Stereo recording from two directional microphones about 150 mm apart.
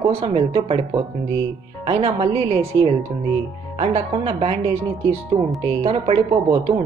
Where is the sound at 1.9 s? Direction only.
45° right (ahead or behind).